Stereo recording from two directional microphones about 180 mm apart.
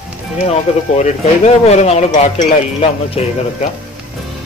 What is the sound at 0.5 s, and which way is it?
Speech, 40° left (ahead or behind).